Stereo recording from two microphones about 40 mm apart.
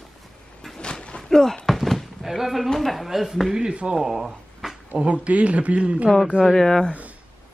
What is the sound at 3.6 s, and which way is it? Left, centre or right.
Speech, right.